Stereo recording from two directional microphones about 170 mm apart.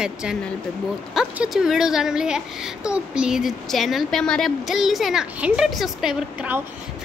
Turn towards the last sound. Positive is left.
turn(degrees=-5)  # may be behind; listen again after turning